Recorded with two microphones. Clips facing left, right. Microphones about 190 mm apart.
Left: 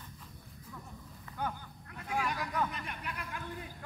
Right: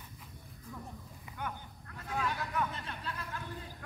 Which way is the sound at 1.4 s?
35° left (ahead or behind).